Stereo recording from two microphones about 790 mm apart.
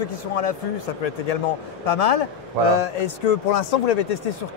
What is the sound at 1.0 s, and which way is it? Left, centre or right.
Speech, left.